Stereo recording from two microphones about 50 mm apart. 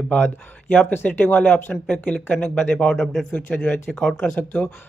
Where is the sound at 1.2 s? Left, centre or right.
Left; by 4.3 s centre.